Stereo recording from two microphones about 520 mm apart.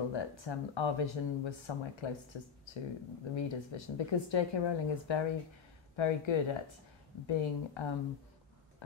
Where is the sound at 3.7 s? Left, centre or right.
Left.